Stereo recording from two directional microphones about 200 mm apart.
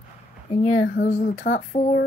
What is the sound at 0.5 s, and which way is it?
Speech, 35° left (ahead or behind).